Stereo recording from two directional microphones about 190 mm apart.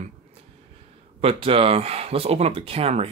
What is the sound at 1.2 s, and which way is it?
Speech, 30° right (ahead or behind).